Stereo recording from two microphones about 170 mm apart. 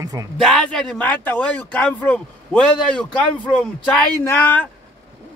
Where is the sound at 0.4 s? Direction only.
Centre (ahead or behind).